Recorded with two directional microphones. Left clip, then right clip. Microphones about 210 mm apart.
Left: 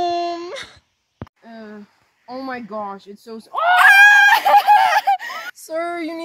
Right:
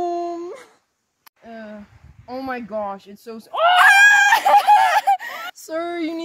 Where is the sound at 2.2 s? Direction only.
35° right (ahead or behind).